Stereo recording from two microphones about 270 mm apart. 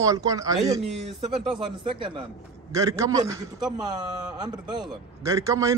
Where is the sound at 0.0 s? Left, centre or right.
Centre.